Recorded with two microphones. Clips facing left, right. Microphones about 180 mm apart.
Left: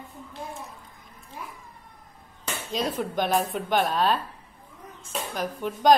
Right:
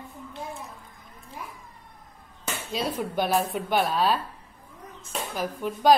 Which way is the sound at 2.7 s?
10° right (ahead or behind).